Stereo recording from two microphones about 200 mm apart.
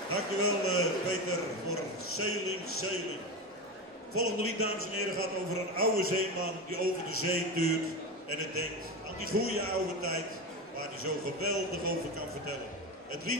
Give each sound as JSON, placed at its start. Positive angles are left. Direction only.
{"t": 0.1, "sound": "a man's voice", "side_deg": 90}
{"t": 4.1, "sound": "a man's voice", "side_deg": 90}